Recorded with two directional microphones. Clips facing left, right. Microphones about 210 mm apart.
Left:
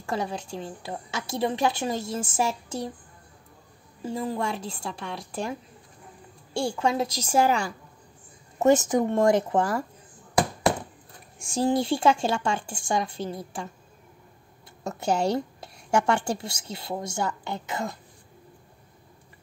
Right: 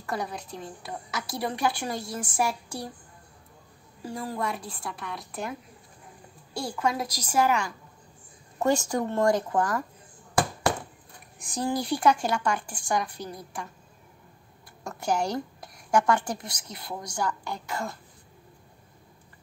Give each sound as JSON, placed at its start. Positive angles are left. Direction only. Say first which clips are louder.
{"t": 0.0, "sound": "a woman's voice", "louder": "left 3 dB", "side_deg": 25}
{"t": 4.0, "sound": "a woman's voice", "louder": "left 3 dB", "side_deg": 20}
{"t": 6.5, "sound": "a woman's voice", "louder": "left 3 dB", "side_deg": 25}
{"t": 8.5, "sound": "a woman's voice", "louder": "left 5 dB", "side_deg": 20}
{"t": 11.3, "sound": "a woman's voice", "louder": "left 5 dB", "side_deg": 25}
{"t": 14.8, "sound": "a woman's voice", "louder": "left 2 dB", "side_deg": 25}